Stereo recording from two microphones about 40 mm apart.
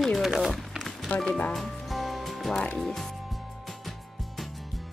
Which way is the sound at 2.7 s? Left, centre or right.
Centre.